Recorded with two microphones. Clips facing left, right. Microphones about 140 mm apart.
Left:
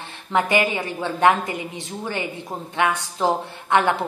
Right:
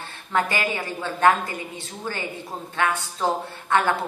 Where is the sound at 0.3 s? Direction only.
20° left (ahead or behind).